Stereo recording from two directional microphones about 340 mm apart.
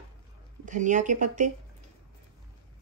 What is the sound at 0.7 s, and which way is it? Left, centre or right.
Speech, right.